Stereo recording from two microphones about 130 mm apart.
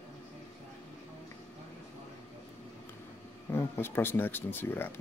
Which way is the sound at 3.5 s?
15° left (ahead or behind).